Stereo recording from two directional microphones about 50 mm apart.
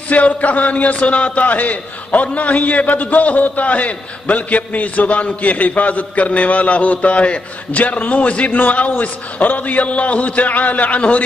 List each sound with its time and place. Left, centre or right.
0.1 s a man's voice: left